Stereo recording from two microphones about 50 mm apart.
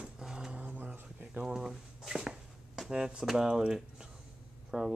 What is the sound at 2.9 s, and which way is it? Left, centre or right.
Speech, centre.